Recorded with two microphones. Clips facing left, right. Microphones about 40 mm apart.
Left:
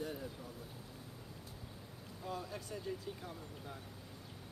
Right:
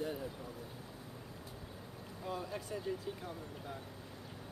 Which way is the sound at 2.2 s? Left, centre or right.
Centre.